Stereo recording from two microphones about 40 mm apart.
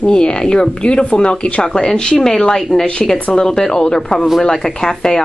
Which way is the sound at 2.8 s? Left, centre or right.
Left.